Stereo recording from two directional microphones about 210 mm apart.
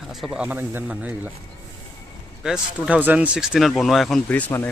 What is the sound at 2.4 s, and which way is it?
Speech, 5° right (ahead or behind).